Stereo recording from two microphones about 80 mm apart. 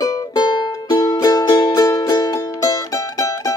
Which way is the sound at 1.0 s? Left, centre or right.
Left.